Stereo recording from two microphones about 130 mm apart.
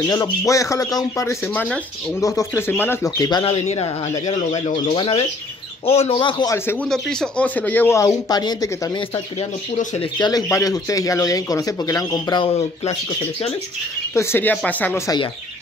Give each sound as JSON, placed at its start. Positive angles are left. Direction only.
{"t": 0.0, "sound": "speech", "side_deg": 30}
{"t": 2.1, "sound": "speech", "side_deg": 20}
{"t": 3.2, "sound": "speech", "side_deg": 30}
{"t": 3.4, "sound": "speech", "side_deg": 50}
{"t": 4.3, "sound": "speech", "side_deg": 60}
{"t": 4.9, "sound": "speech", "side_deg": 40}
{"t": 6.5, "sound": "speech", "side_deg": 15}
{"t": 6.9, "sound": "speech", "side_deg": 5}
{"t": 8.3, "sound": "speech", "side_deg": 30}
{"t": 10.1, "sound": "speech", "side_deg": 35}
{"t": 14.1, "sound": "speech", "side_deg": 20}